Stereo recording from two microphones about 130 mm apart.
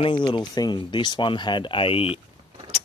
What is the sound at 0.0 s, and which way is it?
Speech, 35° left (ahead or behind).